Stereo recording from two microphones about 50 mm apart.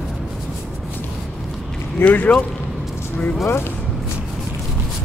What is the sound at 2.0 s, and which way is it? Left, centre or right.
Speech, left.